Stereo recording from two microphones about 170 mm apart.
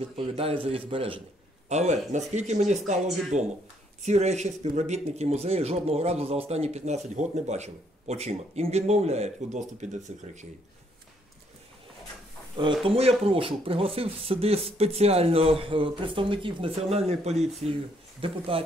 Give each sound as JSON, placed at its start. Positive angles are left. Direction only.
{"t": 0.0, "sound": "speech", "side_deg": -35}
{"t": 1.7, "sound": "speech", "side_deg": -40}
{"t": 12.8, "sound": "speech", "side_deg": -35}